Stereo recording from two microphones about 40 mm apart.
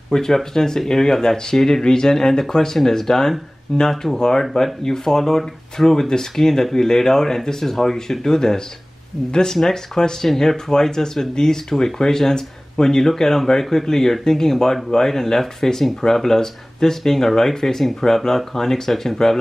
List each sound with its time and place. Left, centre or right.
0.1 s speech: centre